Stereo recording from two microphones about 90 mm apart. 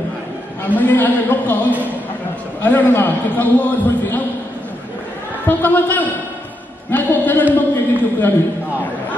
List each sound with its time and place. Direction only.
0.7 s a man's voice: 20° left (ahead or behind)
2.6 s a man's voice: 20° left (ahead or behind)
5.6 s a man's voice: 20° left (ahead or behind)